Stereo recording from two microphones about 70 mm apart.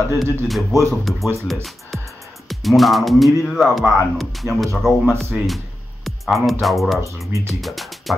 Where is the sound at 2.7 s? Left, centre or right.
Centre.